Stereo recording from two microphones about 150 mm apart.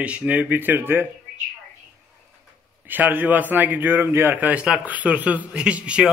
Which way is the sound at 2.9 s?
10° right (ahead or behind).